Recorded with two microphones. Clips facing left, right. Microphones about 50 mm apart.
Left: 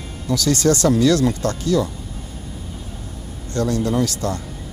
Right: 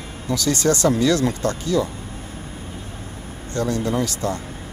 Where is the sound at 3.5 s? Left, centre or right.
Right.